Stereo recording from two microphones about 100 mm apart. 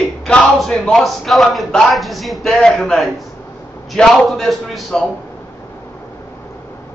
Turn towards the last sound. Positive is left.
turn(degrees=0)  # may be behind; listen again after turning